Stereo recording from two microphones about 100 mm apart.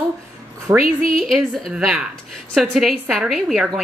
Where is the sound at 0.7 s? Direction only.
40° right (ahead or behind).